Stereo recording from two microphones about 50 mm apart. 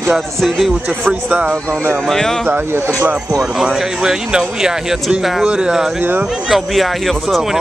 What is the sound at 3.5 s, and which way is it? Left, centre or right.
Speech, centre.